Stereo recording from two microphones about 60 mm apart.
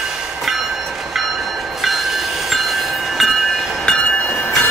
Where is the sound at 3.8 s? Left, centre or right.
Centre.